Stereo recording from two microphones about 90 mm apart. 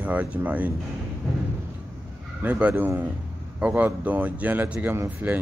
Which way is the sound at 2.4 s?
15° right (ahead or behind).